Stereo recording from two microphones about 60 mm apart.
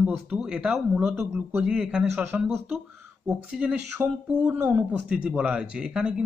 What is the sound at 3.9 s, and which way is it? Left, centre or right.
Speech, right.